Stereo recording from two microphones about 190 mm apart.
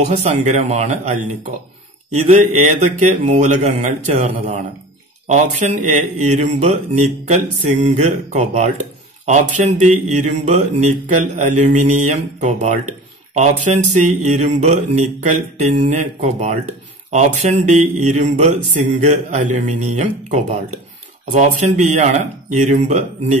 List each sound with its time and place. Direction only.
0.0 s speech: 35° right (ahead or behind)